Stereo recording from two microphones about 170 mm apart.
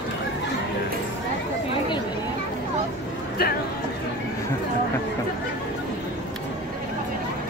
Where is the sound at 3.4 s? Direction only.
65° left (ahead or behind).